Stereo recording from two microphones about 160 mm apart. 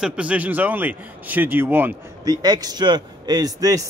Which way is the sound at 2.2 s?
25° right (ahead or behind).